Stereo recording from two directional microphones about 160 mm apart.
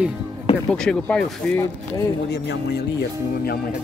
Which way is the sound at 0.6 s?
5° left (ahead or behind).